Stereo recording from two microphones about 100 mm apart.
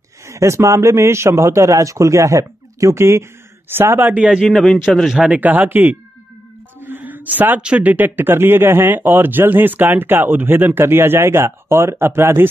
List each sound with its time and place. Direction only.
0.3 s speech: 30° right (ahead or behind); by 4.6 s 5° right (ahead or behind)
4.6 s a man's voice: 5° left (ahead or behind); by 12.4 s 25° right (ahead or behind)